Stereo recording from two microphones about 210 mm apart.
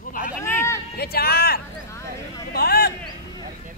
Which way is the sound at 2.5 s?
45° left (ahead or behind).